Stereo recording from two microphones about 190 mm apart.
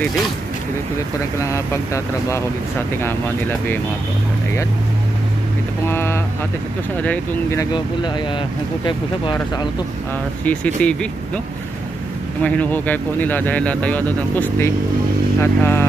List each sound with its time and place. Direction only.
1.4 s speech: 15° left (ahead or behind)
3.0 s speech: 10° left (ahead or behind)
5.9 s speech: 10° left (ahead or behind)
8.8 s speech: 25° left (ahead or behind)
10.4 s speech: 5° left (ahead or behind)
12.4 s speech: 10° left (ahead or behind)